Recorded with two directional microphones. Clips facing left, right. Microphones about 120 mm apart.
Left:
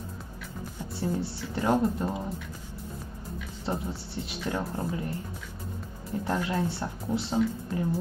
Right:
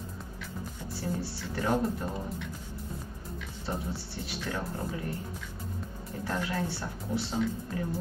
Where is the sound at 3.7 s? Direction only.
20° left (ahead or behind).